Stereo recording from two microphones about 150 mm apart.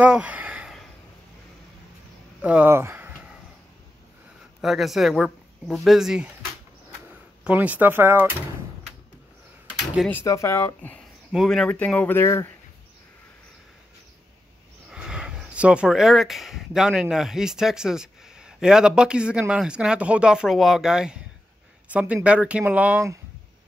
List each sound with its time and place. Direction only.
0.0 s a sound: 10° right (ahead or behind)
2.4 s speech: 10° right (ahead or behind)
4.6 s speech: centre (ahead or behind)
7.4 s speech: 10° right (ahead or behind)
10.0 s speech: 15° left (ahead or behind)
11.3 s speech: 5° left (ahead or behind)
14.9 s speech: 5° right (ahead or behind)